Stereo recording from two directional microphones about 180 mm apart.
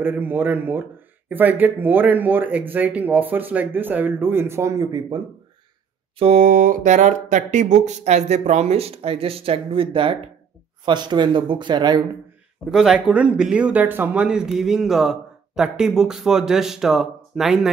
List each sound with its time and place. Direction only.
0.0 s speech: 10° right (ahead or behind)
6.1 s speech: 35° right (ahead or behind)
6.4 s speech: 50° right (ahead or behind); by 12.0 s 25° right (ahead or behind)
12.7 s speech: centre (ahead or behind)